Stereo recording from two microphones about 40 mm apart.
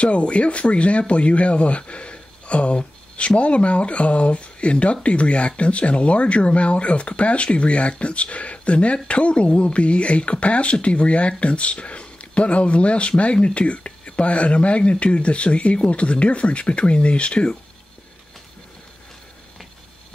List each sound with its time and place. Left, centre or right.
0.0 s speech: left